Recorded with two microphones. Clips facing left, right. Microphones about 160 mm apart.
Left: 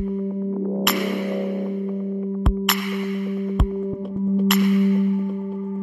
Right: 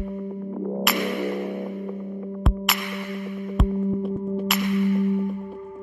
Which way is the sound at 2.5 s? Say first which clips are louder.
Left 4 dB; centre (ahead or behind).